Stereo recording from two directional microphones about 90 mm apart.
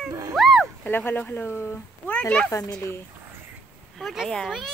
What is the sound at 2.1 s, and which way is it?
Speech, 10° left (ahead or behind).